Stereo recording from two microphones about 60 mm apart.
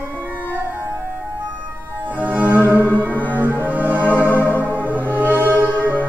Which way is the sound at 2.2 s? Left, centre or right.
Right.